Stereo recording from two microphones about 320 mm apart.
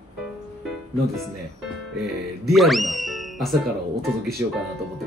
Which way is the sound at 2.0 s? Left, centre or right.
Centre.